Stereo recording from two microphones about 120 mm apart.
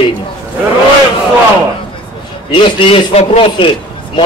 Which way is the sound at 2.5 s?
50° left (ahead or behind).